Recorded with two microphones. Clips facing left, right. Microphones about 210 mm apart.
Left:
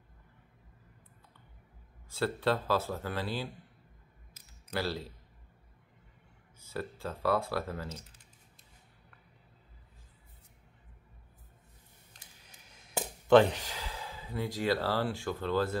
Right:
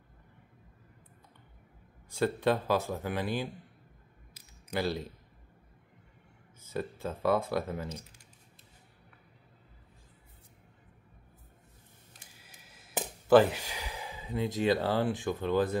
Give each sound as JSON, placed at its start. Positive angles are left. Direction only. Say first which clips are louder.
{"t": 2.0, "sound": "speech", "louder": "right 2 dB", "side_deg": -15}
{"t": 4.6, "sound": "speech", "louder": "right 3 dB", "side_deg": -20}
{"t": 6.6, "sound": "speech", "louder": "right 3 dB", "side_deg": -20}
{"t": 12.1, "sound": "a sound", "louder": "right 1 dB", "side_deg": -5}
{"t": 13.3, "sound": "speech", "louder": "even", "side_deg": -5}